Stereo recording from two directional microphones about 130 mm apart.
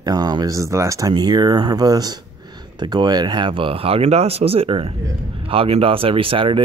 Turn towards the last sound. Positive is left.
turn(degrees=-40)  # may be behind; listen again after turning